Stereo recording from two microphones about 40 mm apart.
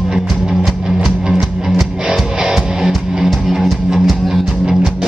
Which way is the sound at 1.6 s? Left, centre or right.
Centre.